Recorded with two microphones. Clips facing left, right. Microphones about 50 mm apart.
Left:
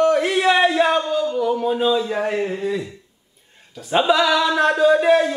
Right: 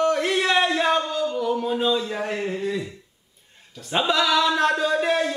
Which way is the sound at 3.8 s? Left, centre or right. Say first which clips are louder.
Left 5 dB; centre.